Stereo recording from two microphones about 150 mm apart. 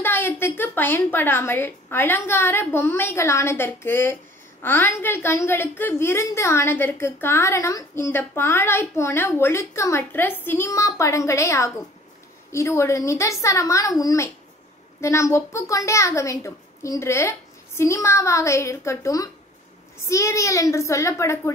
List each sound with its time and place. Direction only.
0.0 s a woman's voice: 15° left (ahead or behind)